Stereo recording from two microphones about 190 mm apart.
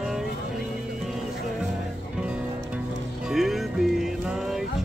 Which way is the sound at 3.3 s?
Centre (ahead or behind).